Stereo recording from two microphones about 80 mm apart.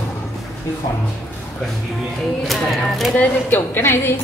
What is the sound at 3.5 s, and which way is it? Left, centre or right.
Speech, left.